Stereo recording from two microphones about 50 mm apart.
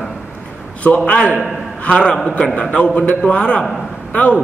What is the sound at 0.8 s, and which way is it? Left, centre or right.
A man's voice, left.